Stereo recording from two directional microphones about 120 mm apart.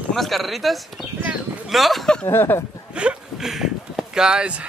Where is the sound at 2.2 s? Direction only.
20° left (ahead or behind).